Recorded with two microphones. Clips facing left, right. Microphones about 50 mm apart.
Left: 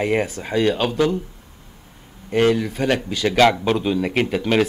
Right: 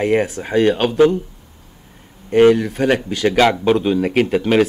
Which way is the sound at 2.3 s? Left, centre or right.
Centre.